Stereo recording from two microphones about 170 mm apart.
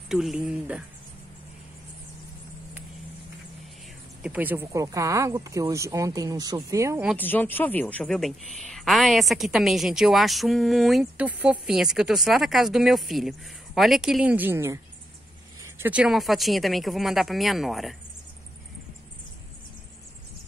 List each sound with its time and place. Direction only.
0.1 s a woman's voice: centre (ahead or behind)
4.2 s speech: 10° right (ahead or behind)
7.2 s a woman's voice: 10° left (ahead or behind)